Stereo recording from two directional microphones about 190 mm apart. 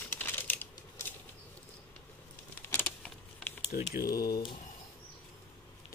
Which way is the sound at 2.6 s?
10° left (ahead or behind).